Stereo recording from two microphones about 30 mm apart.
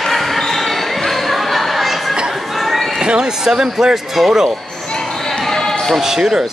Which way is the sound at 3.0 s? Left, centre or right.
Right.